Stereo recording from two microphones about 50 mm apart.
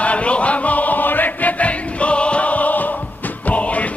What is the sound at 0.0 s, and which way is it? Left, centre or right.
Choir, left.